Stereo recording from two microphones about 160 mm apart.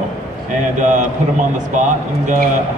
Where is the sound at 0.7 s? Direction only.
50° right (ahead or behind).